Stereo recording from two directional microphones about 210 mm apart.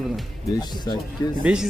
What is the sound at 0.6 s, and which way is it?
Speech, 20° left (ahead or behind).